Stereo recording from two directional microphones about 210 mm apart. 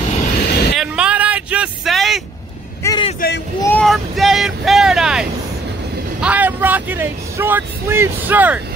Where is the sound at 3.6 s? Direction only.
5° left (ahead or behind).